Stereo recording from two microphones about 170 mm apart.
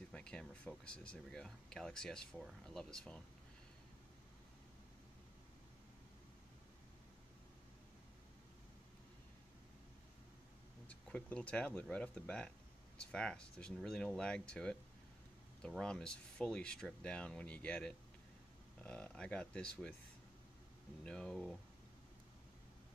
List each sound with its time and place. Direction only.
0.1 s speech: 5° left (ahead or behind)
10.9 s speech: 10° left (ahead or behind)
21.0 s speech: 5° left (ahead or behind)